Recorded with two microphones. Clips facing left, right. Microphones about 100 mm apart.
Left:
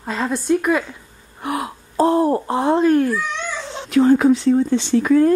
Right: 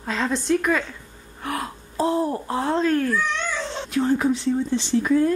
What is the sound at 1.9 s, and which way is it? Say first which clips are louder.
Speech: left 6 dB; 55° left (ahead or behind).